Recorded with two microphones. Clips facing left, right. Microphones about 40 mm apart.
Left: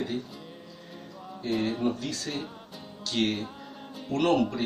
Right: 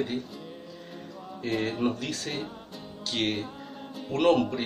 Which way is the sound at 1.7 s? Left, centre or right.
Right.